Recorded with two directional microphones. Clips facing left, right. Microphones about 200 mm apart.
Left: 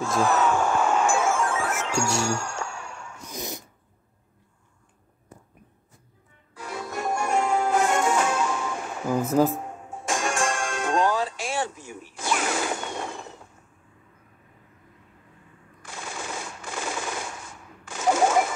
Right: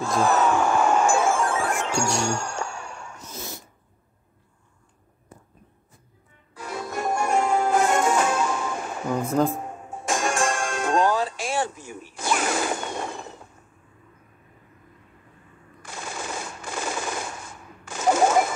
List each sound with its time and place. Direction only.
0.2 s speech: 35° right (ahead or behind)
0.8 s music: 40° right (ahead or behind)
3.2 s dog: 15° left (ahead or behind)
6.5 s music: 40° right (ahead or behind)
9.0 s speech: 5° left (ahead or behind)
10.0 s music: 40° right (ahead or behind)
15.8 s machine gun: 40° right (ahead or behind)